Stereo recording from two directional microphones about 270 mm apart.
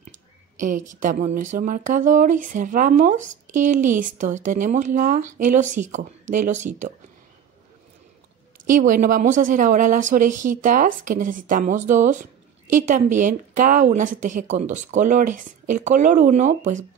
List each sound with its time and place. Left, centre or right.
0.6 s a woman's voice: right
8.6 s speech: right